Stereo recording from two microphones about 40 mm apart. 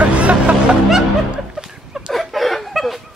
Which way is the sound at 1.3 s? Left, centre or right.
Centre.